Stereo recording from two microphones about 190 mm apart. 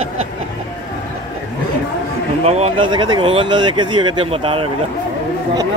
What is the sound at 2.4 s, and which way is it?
A man's voice, 35° right (ahead or behind).